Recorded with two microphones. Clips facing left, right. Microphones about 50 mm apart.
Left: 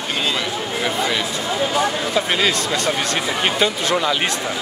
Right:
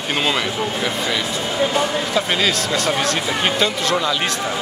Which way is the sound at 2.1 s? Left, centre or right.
Centre.